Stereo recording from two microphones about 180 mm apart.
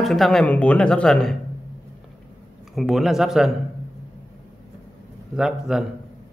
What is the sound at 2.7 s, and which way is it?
Speech, centre (ahead or behind).